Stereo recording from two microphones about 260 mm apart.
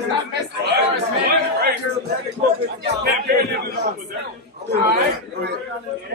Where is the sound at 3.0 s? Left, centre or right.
Right.